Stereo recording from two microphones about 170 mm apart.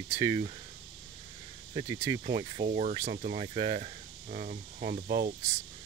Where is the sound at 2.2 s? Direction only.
35° right (ahead or behind).